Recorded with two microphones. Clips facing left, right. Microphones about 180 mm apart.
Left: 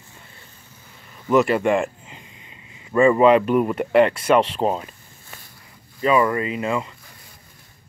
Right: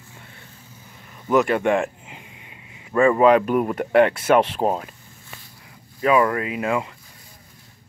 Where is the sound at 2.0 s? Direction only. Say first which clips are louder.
Right 1 dB; 10° right (ahead or behind).